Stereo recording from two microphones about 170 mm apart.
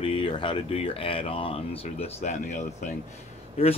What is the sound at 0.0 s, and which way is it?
Speech, 30° left (ahead or behind).